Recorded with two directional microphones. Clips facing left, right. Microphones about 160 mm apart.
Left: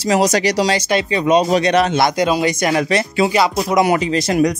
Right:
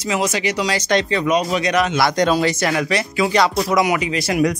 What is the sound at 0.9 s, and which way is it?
Speech, 15° left (ahead or behind).